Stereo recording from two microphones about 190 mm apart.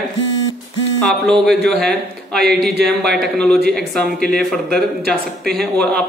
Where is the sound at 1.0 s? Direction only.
Centre (ahead or behind).